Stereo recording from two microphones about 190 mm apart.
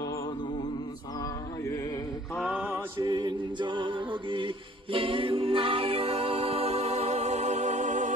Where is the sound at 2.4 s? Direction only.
10° right (ahead or behind).